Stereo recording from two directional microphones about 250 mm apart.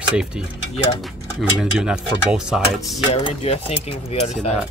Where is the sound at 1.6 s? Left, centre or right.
Centre.